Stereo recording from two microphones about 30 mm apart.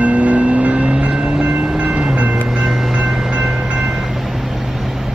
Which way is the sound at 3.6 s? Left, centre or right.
Right.